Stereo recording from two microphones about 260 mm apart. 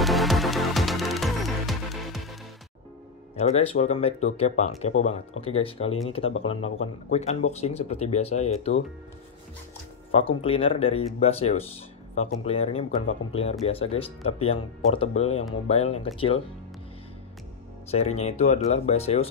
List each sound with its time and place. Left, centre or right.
0.0 s music: centre
3.3 s speech: left
10.1 s speech: left
17.9 s speech: left